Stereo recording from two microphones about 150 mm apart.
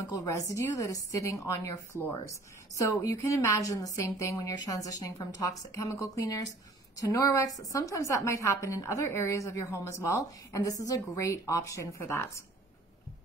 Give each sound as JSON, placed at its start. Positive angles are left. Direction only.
{"t": 0.1, "sound": "a woman's voice", "side_deg": 20}